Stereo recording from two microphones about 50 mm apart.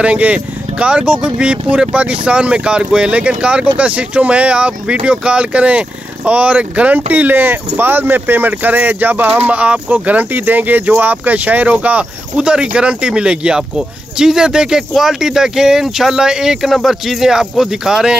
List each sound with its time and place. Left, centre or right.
0.0 s speech: right